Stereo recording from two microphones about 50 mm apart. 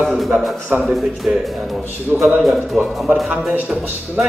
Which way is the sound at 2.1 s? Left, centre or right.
Right.